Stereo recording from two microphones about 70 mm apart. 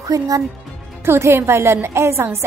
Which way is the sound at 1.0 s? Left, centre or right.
Right.